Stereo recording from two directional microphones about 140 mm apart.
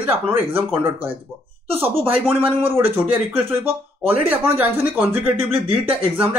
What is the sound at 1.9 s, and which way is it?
Speech, 40° right (ahead or behind).